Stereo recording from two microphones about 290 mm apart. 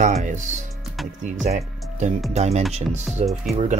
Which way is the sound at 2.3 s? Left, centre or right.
Right.